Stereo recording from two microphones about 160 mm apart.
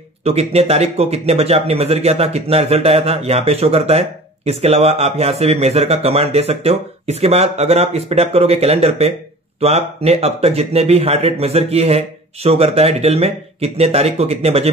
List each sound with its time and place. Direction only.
0.2 s speech: 40° right (ahead or behind)